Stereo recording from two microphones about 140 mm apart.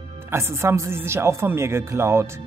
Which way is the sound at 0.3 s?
20° right (ahead or behind).